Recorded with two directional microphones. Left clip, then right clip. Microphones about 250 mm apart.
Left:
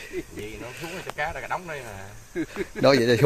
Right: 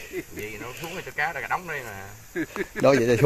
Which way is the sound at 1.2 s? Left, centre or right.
Centre.